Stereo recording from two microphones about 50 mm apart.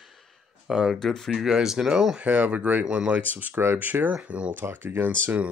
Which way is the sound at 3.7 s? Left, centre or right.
Right.